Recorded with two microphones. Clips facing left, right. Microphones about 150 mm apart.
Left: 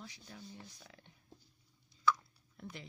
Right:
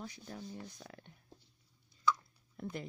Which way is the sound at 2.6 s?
45° right (ahead or behind).